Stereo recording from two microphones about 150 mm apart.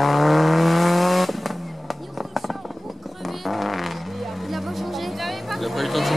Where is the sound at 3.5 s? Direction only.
Centre (ahead or behind).